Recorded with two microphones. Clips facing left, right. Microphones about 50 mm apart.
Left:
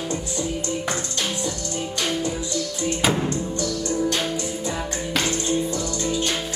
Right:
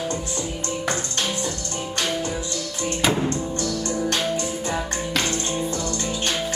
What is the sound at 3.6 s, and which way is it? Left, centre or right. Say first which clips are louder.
Music: left 3 dB; right.